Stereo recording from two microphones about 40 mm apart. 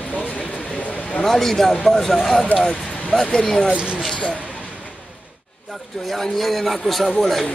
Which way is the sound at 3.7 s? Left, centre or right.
Right.